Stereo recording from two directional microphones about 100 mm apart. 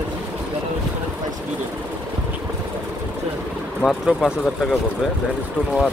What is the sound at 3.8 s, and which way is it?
Speech, centre (ahead or behind).